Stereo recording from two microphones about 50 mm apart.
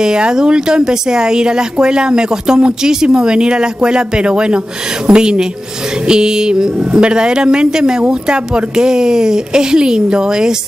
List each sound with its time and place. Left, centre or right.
0.0 s speech: centre